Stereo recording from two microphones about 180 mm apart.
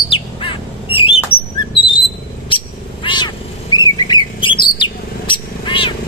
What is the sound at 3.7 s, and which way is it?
Bird, 25° left (ahead or behind).